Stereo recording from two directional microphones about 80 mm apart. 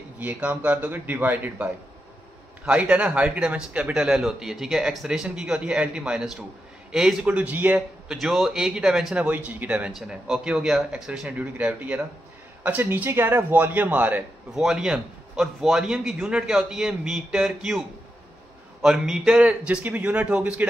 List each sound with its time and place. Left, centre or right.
0.2 s a man's voice: right
7.3 s a man's voice: centre
8.1 s a man's voice: centre
9.3 s a man's voice: right
14.5 s a man's voice: centre